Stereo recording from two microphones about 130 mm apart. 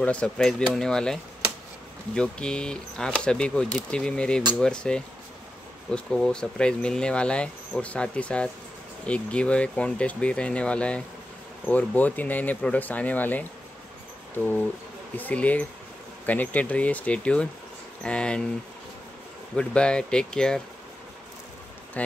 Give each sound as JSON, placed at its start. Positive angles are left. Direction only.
{"t": 0.0, "sound": "speech", "side_deg": 10}
{"t": 19.5, "sound": "speech", "side_deg": 5}
{"t": 22.0, "sound": "speech", "side_deg": 10}